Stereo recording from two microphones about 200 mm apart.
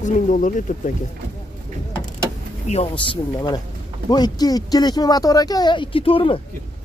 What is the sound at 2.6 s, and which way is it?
Speech, 35° left (ahead or behind).